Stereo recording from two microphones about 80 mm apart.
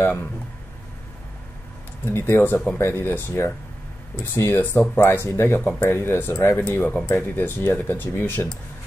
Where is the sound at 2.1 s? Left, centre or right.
Left.